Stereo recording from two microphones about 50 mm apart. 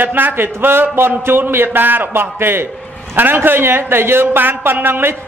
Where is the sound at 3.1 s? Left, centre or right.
Right.